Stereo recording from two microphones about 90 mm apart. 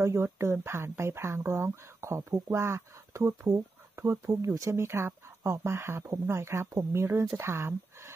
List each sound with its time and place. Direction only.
0.0 s speech: 30° right (ahead or behind)